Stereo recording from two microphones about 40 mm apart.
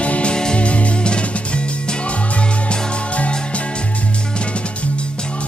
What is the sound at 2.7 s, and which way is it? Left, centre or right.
Music, left.